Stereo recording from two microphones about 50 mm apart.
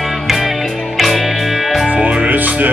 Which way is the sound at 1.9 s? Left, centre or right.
Right.